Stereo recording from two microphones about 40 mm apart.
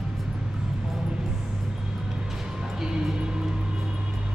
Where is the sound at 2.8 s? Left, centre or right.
Centre.